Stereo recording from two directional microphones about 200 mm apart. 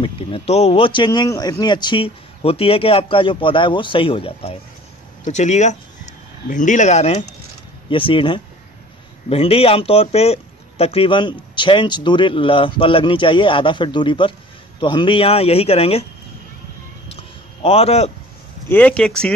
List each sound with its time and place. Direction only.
0.0 s speech: 30° left (ahead or behind)
17.1 s a sound: 30° left (ahead or behind)
18.7 s speech: 5° left (ahead or behind)